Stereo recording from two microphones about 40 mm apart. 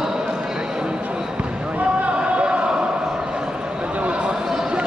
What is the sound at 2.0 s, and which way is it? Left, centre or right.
Basketball bounce, right.